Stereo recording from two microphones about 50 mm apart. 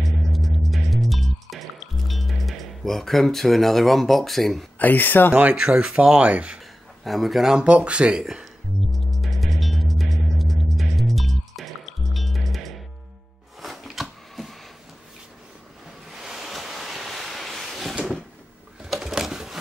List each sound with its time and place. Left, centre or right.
0.3 s music: centre
4.7 s speech: left
5.5 s speech: centre
7.1 s speech: centre
7.6 s speech: right
8.2 s speech: centre
9.1 s music: centre
13.6 s a sound: centre
16.1 s waves: centre
18.9 s a sound: centre